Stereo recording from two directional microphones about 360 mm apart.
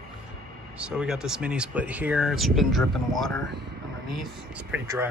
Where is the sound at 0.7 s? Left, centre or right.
Centre.